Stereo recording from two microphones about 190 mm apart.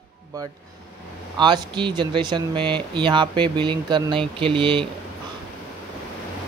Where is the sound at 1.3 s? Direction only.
25° right (ahead or behind).